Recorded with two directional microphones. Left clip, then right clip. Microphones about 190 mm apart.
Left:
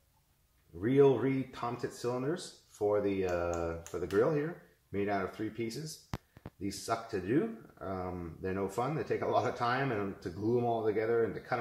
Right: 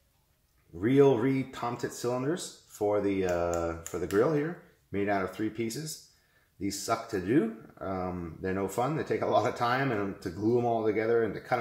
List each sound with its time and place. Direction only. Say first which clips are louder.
0.7 s speech: right 3 dB; 25° right (ahead or behind)
6.9 s speech: right 4 dB; 25° right (ahead or behind)